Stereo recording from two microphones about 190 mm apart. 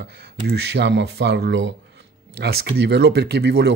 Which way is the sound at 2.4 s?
60° right (ahead or behind).